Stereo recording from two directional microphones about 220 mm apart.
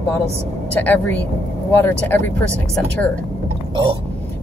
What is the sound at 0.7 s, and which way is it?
Speech, 10° left (ahead or behind).